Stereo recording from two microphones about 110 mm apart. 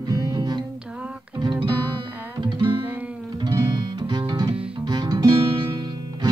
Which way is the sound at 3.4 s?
40° right (ahead or behind).